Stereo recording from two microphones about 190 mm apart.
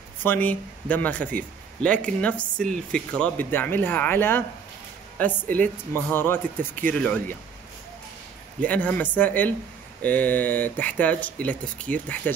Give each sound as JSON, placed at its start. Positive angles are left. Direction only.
{"t": 0.2, "sound": "a man's voice", "side_deg": 10}
{"t": 8.5, "sound": "a man's voice", "side_deg": 10}